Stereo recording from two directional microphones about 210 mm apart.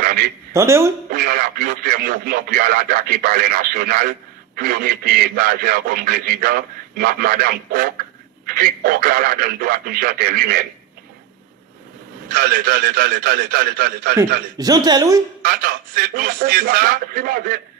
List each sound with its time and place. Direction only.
0.0 s a sound: 45° right (ahead or behind)
0.5 s speech: 15° right (ahead or behind)
1.1 s a man's voice: 45° right (ahead or behind)
12.3 s a man's voice: 45° right (ahead or behind)
14.6 s speech: 20° right (ahead or behind)
15.4 s a man's voice: 45° right (ahead or behind)